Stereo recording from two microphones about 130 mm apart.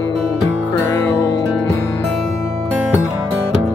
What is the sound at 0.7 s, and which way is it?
Music, 20° left (ahead or behind).